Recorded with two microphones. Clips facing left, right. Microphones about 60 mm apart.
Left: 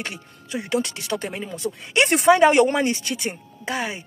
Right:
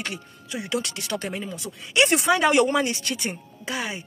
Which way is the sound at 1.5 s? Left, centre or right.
Left.